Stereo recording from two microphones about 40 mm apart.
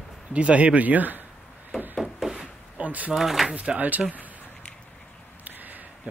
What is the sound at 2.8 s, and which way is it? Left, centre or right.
Speech, right.